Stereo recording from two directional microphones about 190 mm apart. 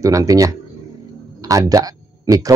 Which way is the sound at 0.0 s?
15° right (ahead or behind).